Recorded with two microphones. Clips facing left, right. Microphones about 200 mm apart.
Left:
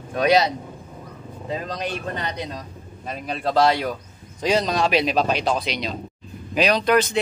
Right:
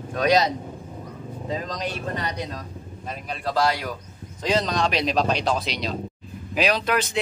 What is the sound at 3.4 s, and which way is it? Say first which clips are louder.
Speech: left 4 dB; 25° left (ahead or behind).